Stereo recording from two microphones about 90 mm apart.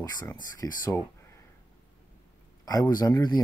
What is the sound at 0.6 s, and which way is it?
Speech, 35° left (ahead or behind).